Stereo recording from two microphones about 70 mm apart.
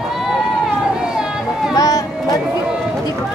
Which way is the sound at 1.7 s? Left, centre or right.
Left.